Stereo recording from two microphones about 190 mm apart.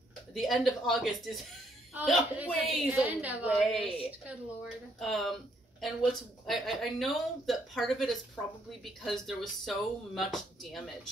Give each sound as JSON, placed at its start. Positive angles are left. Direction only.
{"t": 0.3, "sound": "a woman's voice", "side_deg": 0}
{"t": 3.8, "sound": "a woman's voice", "side_deg": 30}
{"t": 5.0, "sound": "speech", "side_deg": 0}